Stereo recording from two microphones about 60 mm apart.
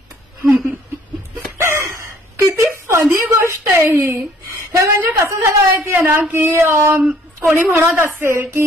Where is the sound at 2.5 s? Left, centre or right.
Right.